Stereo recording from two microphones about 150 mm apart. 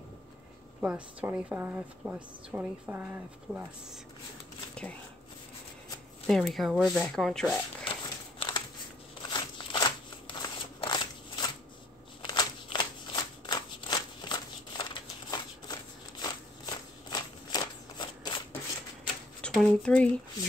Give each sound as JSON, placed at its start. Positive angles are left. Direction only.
{"t": 0.7, "sound": "a woman's voice", "side_deg": -10}
{"t": 6.2, "sound": "speech", "side_deg": 0}
{"t": 7.8, "sound": "a sound", "side_deg": 35}
{"t": 9.2, "sound": "scissors", "side_deg": 30}
{"t": 12.2, "sound": "shuffling cards", "side_deg": 30}
{"t": 19.4, "sound": "a sound", "side_deg": 5}